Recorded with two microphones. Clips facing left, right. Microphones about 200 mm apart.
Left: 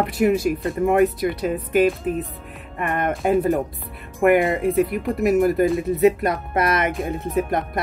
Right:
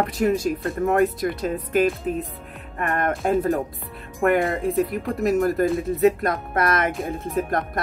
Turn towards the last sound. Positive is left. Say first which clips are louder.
# left 2 dB
turn(degrees=5)  # may be behind; listen again after turning